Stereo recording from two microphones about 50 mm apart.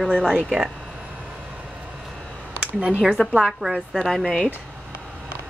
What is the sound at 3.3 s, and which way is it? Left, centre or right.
Speech, centre.